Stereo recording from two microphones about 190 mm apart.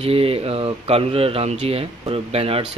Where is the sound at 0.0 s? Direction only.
30° right (ahead or behind).